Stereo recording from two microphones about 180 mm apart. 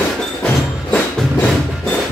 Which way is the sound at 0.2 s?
5° left (ahead or behind).